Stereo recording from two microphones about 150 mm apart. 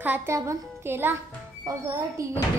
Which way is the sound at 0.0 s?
15° right (ahead or behind).